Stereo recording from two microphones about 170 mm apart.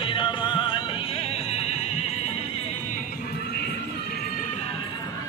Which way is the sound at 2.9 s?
60° left (ahead or behind).